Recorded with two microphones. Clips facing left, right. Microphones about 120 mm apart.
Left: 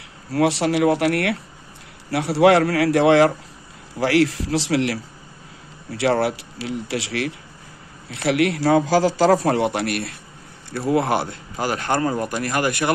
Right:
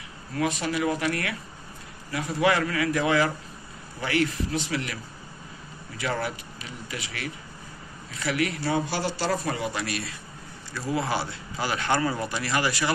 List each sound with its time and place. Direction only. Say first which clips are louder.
0.3 s a man's voice: left 8 dB; 85° left; by 12.9 s 55° left (ahead or behind)